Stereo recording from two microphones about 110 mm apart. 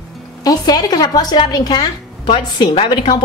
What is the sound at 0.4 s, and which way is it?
A woman's voice, 35° left (ahead or behind).